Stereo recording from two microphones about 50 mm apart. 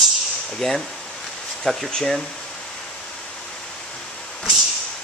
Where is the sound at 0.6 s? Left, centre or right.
Centre.